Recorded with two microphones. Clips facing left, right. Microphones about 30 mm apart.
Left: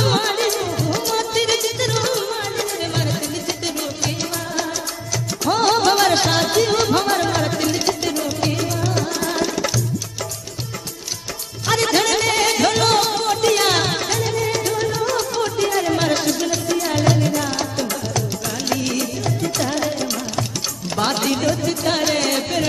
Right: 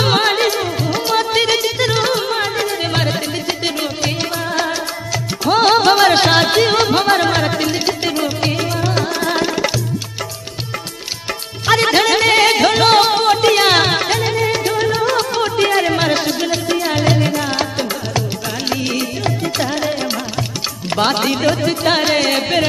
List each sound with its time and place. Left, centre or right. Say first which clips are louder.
0.0 s music: right 4 dB; right
5.4 s music: right 4 dB; right
11.6 s music: right 5 dB; right
20.9 s music: right 4 dB; right
21.5 s music: right 5 dB; right